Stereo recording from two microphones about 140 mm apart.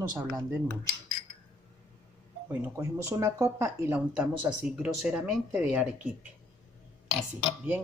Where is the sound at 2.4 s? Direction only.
20° right (ahead or behind).